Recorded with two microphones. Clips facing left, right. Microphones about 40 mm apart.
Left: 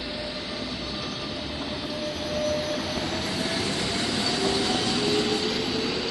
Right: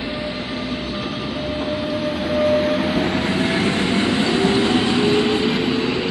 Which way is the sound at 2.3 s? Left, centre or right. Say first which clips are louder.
Right 10 dB; right.